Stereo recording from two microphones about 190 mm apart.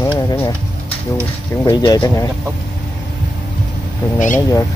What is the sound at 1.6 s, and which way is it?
Speech, 20° left (ahead or behind).